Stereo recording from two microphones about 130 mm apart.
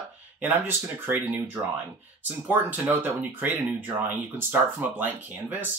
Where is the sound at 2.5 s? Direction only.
15° right (ahead or behind).